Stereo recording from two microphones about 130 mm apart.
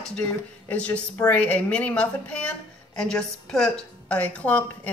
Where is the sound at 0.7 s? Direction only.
10° left (ahead or behind).